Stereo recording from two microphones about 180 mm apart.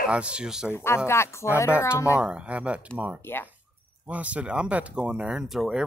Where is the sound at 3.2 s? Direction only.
10° left (ahead or behind).